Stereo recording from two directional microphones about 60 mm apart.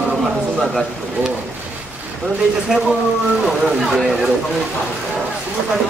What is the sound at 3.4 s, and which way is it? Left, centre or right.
Speech, centre.